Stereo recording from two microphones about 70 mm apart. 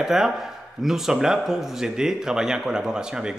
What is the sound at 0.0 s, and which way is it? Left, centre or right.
A man's voice, centre.